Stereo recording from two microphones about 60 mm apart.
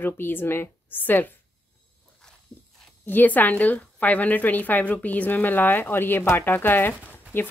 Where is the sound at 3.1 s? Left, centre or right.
Left.